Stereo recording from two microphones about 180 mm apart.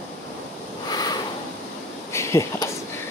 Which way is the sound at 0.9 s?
20° left (ahead or behind).